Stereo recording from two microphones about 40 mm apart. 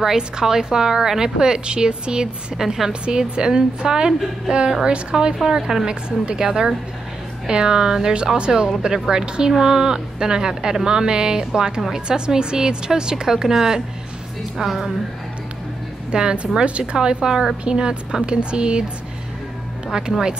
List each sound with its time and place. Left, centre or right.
0.0 s a woman's voice: centre
2.5 s a woman's voice: centre
2.9 s a woman's voice: right
16.1 s a woman's voice: right
19.9 s a woman's voice: centre